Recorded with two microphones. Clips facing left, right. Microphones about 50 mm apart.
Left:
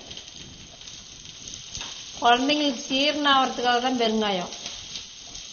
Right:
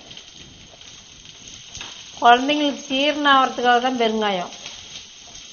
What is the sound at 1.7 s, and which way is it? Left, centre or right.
Speech, right.